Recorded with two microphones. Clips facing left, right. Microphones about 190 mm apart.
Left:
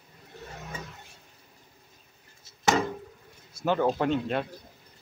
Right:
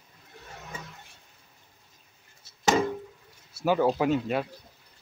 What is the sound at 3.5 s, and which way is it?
Speech, 5° right (ahead or behind).